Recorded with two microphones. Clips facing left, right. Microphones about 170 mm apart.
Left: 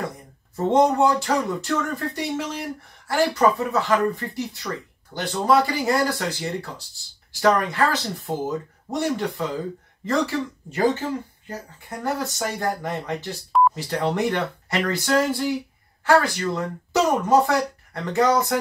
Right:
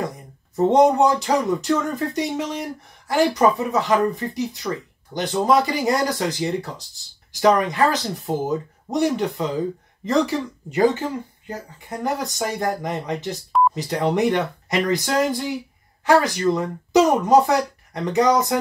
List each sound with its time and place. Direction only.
0.6 s speech: 20° right (ahead or behind)